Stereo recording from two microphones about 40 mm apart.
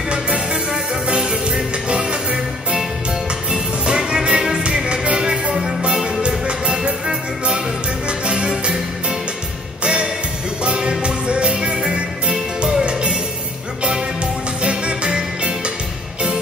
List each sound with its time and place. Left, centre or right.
1.0 s music: right
3.5 s music: right
10.6 s music: right
14.6 s music: right